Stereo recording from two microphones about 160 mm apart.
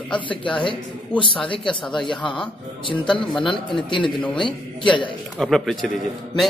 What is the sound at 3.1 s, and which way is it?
Speech, 5° left (ahead or behind).